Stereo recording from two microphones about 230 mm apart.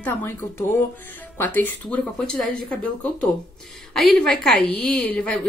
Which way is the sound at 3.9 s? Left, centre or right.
Centre.